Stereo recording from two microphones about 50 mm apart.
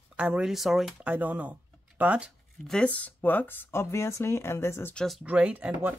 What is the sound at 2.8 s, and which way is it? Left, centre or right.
Speech, left.